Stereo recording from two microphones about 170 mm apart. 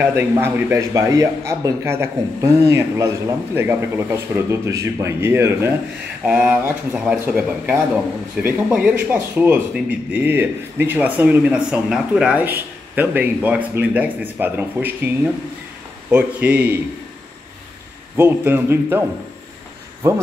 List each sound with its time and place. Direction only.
0.0 s speech: 15° right (ahead or behind)
18.1 s speech: 15° right (ahead or behind)